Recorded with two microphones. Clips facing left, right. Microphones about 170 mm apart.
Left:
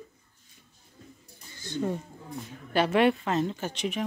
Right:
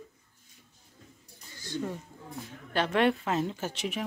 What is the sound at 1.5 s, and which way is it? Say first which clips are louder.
Speech: left 4 dB; 25° left (ahead or behind).